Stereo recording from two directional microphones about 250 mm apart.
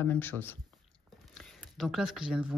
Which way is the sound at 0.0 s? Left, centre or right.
Centre.